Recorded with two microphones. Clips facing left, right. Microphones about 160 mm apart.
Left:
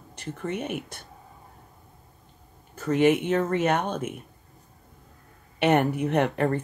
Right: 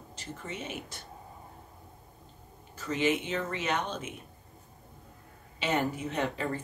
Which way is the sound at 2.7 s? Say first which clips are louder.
Left 8 dB; 55° left (ahead or behind).